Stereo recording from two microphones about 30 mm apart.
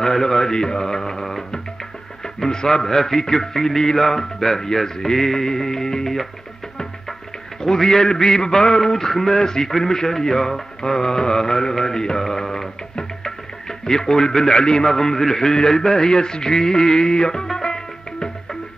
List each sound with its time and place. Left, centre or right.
0.0 s mantra: centre
1.2 s music: centre
2.2 s speech: left
7.6 s mantra: centre
8.9 s speech: centre
10.8 s mantra: left
17.6 s music: left